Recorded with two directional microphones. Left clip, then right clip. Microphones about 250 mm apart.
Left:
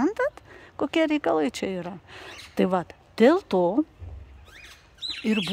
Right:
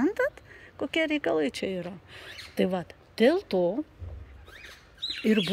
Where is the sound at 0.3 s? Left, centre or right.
Centre.